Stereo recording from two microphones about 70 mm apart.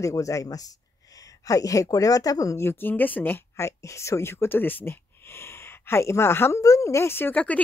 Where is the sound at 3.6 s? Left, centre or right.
Left.